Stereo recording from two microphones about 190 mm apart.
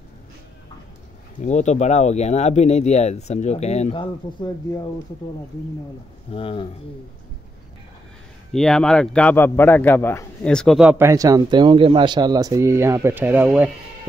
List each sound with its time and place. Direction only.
1.4 s speech: 40° left (ahead or behind)
6.3 s speech: 30° left (ahead or behind)
8.5 s a man's voice: 5° left (ahead or behind)